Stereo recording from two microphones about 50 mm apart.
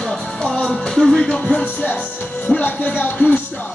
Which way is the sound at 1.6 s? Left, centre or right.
Left.